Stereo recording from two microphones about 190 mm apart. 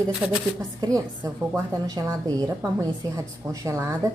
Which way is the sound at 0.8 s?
20° right (ahead or behind).